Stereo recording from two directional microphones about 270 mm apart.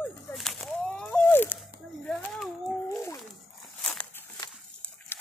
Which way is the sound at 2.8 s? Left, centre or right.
Centre.